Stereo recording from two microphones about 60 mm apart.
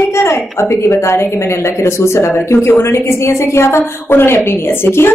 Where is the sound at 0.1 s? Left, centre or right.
Left.